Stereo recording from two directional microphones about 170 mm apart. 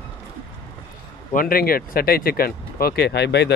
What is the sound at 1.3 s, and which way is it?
Speech, 60° left (ahead or behind).